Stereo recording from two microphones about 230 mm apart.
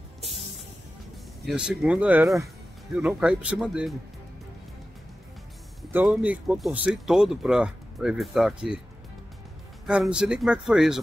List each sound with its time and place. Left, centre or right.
1.4 s speech: centre
5.8 s speech: centre
9.8 s speech: centre